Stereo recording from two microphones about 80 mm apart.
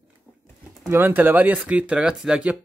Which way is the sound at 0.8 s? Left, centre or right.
Right.